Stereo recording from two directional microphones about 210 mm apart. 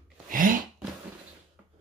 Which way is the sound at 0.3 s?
40° right (ahead or behind).